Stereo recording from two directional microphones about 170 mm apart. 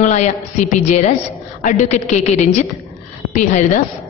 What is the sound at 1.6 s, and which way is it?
Speech, 40° left (ahead or behind).